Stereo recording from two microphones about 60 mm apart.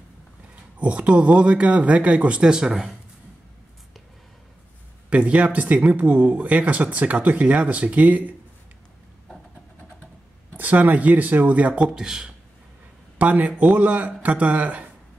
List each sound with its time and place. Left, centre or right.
0.7 s speech: right; by 3.0 s centre
5.1 s speech: right
10.6 s speech: right; by 12.3 s centre
13.2 s speech: right